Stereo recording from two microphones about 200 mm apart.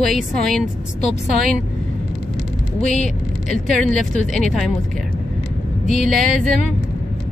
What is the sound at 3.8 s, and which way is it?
Speech, centre (ahead or behind).